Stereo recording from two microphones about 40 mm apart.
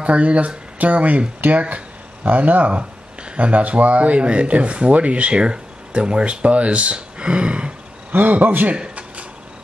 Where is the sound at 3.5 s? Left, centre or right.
Right.